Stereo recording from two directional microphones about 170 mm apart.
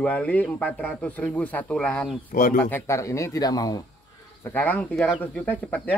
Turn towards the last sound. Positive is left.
turn(degrees=10)  # may be behind; listen again after turning